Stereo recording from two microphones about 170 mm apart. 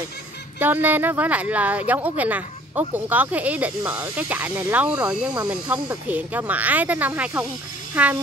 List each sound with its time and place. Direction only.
0.6 s speech: 10° right (ahead or behind)